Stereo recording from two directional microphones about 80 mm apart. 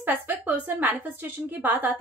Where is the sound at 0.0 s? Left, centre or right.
Right.